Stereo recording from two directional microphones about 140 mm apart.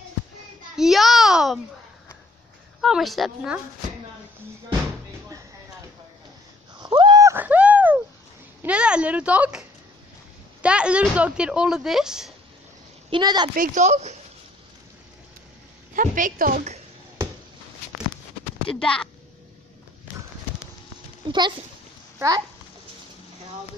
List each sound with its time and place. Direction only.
0.7 s a sound: centre (ahead or behind)
2.8 s a woman's voice: centre (ahead or behind)
6.8 s a sound: 30° right (ahead or behind); by 8.0 s 10° right (ahead or behind)
8.6 s speech: 10° right (ahead or behind)
13.1 s a woman's voice: 30° right (ahead or behind)
13.6 s speech: 55° right (ahead or behind)
15.9 s a woman's voice: 75° right (ahead or behind)
18.7 s a woman's voice: 5° left (ahead or behind)
21.3 s speech: 35° right (ahead or behind)